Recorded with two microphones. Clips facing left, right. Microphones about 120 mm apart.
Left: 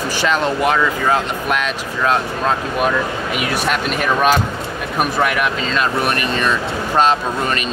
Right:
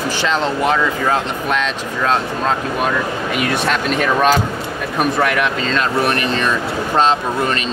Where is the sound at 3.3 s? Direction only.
5° left (ahead or behind).